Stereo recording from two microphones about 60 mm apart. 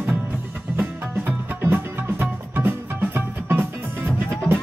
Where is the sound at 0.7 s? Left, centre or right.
Right.